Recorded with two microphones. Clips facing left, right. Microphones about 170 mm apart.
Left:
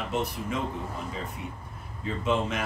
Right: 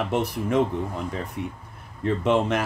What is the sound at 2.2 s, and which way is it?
Speech, 70° right (ahead or behind).